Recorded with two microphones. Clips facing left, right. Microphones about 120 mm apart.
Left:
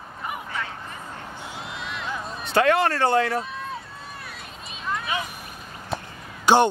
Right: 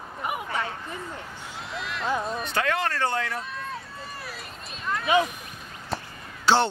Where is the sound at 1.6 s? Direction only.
Centre (ahead or behind).